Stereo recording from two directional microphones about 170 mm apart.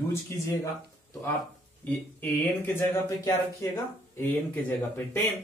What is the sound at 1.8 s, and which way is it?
Speech, 10° left (ahead or behind).